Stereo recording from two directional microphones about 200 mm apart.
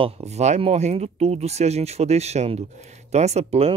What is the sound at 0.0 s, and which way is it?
Speech, 35° right (ahead or behind).